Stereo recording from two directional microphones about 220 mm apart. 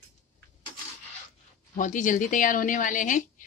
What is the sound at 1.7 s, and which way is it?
Speech, 35° left (ahead or behind).